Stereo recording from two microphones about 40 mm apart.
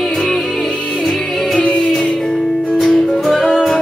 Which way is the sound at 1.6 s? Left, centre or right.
Left.